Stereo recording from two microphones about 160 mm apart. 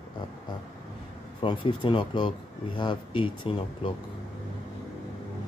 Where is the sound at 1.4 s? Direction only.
30° left (ahead or behind).